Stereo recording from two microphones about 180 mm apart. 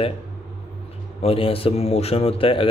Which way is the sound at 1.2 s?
30° left (ahead or behind).